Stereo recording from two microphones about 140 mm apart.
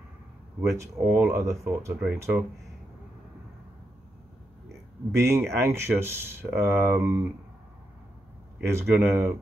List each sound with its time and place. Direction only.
0.6 s speech: 20° right (ahead or behind)
5.1 s speech: 20° right (ahead or behind)
8.5 s speech: 15° right (ahead or behind)